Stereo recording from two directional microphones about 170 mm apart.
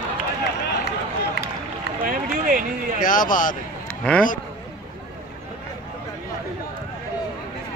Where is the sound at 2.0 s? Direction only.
55° right (ahead or behind).